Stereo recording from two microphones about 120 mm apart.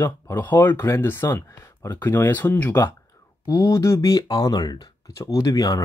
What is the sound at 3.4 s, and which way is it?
Speech, 30° left (ahead or behind).